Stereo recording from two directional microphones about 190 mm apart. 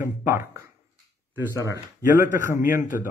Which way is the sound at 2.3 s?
45° left (ahead or behind).